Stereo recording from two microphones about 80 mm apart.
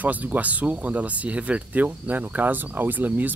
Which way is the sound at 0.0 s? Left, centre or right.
Right.